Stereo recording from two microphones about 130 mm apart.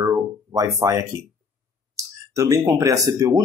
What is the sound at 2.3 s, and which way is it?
Speech, 25° right (ahead or behind).